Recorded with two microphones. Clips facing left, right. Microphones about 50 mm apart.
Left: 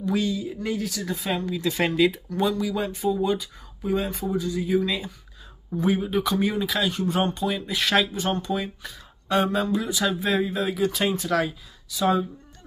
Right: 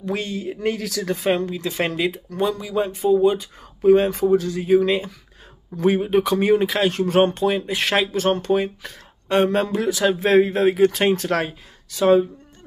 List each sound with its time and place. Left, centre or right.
0.0 s speech: right
0.6 s speech: right
1.2 s speech: right
1.5 s speech: right
3.8 s speech: right
7.3 s speech: right
8.1 s speech: right
9.5 s speech: right